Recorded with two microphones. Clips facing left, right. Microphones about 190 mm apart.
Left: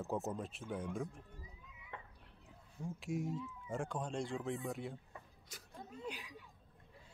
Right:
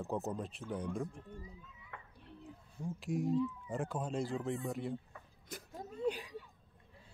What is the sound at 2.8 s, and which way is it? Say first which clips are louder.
Speech: right 5 dB; centre (ahead or behind).